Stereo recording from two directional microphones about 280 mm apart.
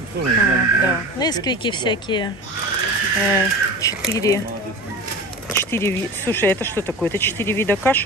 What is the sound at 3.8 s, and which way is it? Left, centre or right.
Speech, centre.